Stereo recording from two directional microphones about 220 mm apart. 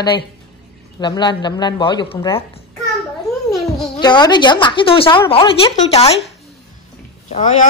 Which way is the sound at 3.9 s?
20° left (ahead or behind).